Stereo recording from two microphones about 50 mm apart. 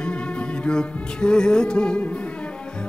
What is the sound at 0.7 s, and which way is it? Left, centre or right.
Music, centre.